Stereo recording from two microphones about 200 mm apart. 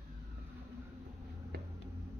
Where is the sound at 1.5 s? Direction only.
50° right (ahead or behind).